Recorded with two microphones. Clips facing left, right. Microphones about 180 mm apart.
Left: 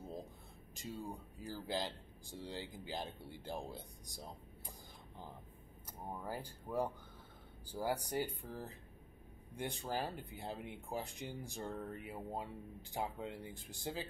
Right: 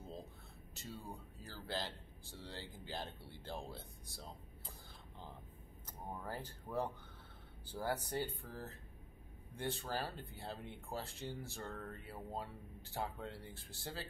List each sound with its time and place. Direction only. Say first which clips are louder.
0.0 s a sound: left 3 dB; 15° left (ahead or behind)
0.7 s speech: left 4 dB; 15° left (ahead or behind)
5.9 s speech: left 2 dB; 10° left (ahead or behind)